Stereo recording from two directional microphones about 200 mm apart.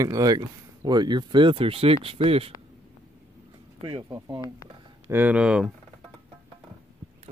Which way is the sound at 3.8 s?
20° right (ahead or behind).